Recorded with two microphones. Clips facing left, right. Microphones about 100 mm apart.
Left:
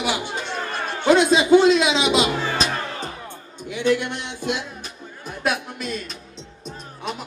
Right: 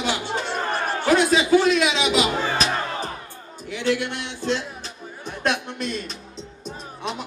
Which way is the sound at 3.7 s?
20° left (ahead or behind).